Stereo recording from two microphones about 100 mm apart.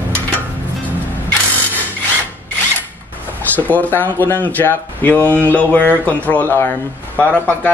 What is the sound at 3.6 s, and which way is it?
Speech, 15° left (ahead or behind).